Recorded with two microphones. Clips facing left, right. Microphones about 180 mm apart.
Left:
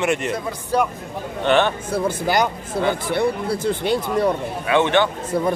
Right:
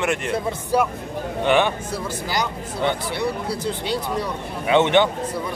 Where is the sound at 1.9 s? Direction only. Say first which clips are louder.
Left 6 dB; 55° left (ahead or behind).